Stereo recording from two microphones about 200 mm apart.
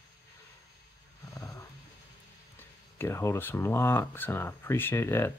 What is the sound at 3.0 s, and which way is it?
Speech, 15° left (ahead or behind).